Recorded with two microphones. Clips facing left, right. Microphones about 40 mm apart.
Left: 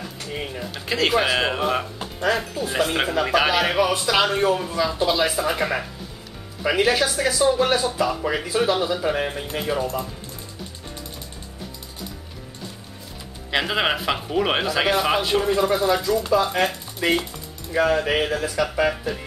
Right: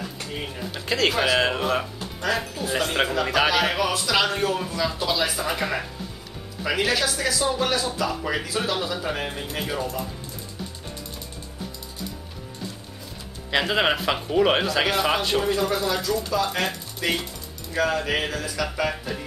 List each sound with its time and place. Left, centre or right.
0.3 s speech: centre
3.1 s speech: centre
6.8 s speech: centre
13.5 s speech: centre
15.5 s speech: centre